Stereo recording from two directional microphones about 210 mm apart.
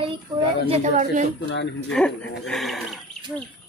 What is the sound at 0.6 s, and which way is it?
Speech, 30° right (ahead or behind).